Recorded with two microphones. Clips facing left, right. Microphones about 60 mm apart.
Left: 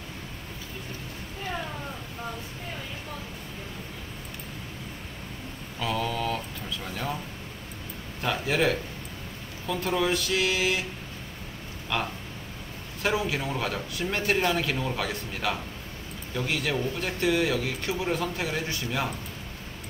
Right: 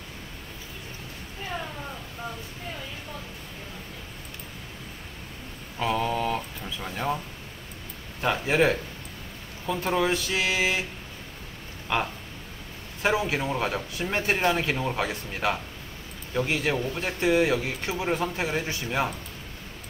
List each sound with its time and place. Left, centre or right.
5.8 s a sound: right
8.2 s speech: right
11.9 s speech: centre